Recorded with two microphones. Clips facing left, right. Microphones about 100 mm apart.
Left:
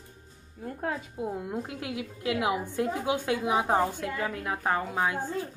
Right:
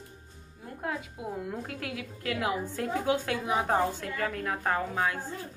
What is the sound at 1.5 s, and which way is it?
A woman's voice, 20° left (ahead or behind).